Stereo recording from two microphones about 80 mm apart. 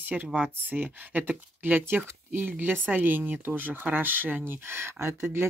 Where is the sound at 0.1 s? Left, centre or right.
Centre.